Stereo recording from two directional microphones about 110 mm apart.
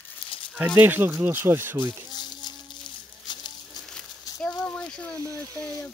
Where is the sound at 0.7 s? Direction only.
20° right (ahead or behind).